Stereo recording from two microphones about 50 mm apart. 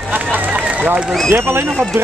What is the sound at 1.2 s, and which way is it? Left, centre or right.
Speech, right.